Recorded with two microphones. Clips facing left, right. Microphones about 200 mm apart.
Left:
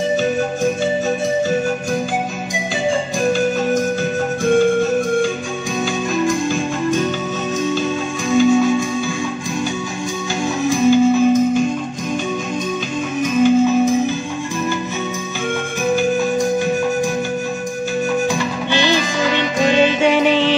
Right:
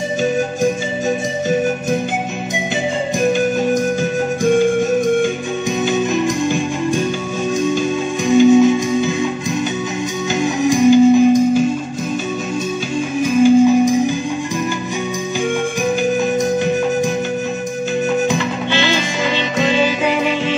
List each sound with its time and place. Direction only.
5.9 s music: 20° right (ahead or behind)
8.3 s music: 20° right (ahead or behind)
10.4 s music: 15° right (ahead or behind)
13.2 s music: 10° right (ahead or behind)
18.7 s music: 15° left (ahead or behind)
20.0 s music: 30° left (ahead or behind)